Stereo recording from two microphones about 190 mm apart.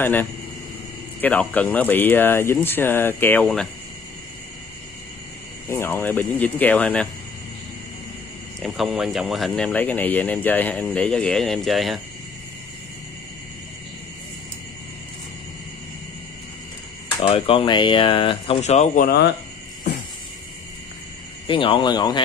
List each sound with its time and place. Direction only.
0.0 s speech: 10° left (ahead or behind)
5.7 s speech: 10° left (ahead or behind)
8.6 s speech: centre (ahead or behind)
17.2 s speech: 30° left (ahead or behind)
19.0 s speech: 60° left (ahead or behind)
21.5 s speech: 25° left (ahead or behind)